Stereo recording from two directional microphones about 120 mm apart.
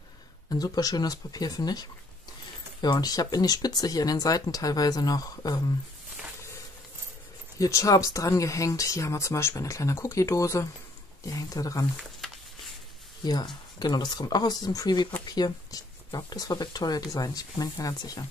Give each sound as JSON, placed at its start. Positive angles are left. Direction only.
{"t": 0.5, "sound": "speech", "side_deg": 30}
{"t": 7.5, "sound": "speech", "side_deg": 25}
{"t": 13.2, "sound": "speech", "side_deg": 35}